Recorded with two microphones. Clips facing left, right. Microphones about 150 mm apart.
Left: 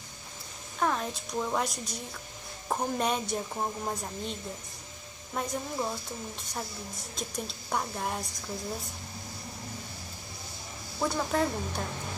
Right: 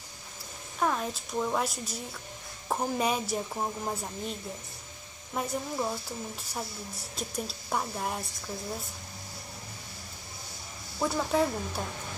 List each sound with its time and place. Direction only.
0.7 s a woman's voice: 5° right (ahead or behind)
7.2 s a woman's voice: 5° right (ahead or behind)
11.0 s a woman's voice: 5° right (ahead or behind)